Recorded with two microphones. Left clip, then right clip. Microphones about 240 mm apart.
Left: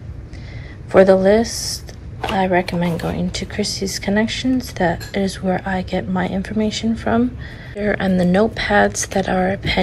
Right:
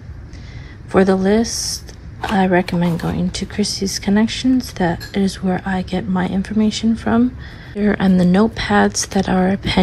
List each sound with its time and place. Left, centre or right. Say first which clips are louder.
0.9 s a woman's voice: left 4 dB; centre